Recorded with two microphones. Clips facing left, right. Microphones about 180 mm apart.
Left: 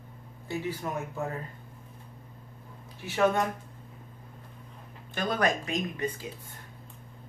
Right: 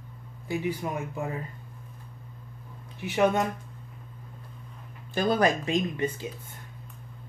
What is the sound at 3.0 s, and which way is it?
Speech, 20° right (ahead or behind).